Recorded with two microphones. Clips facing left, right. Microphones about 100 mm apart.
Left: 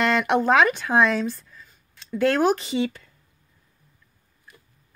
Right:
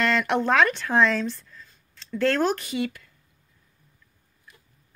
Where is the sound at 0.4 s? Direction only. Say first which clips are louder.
Left 2 dB; 15° left (ahead or behind); by 3.1 s 30° left (ahead or behind).